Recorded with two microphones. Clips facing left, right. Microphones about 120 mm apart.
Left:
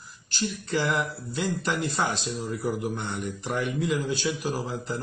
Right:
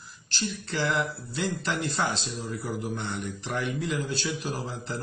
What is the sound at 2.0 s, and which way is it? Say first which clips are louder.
Speech: left 1 dB; 50° left (ahead or behind).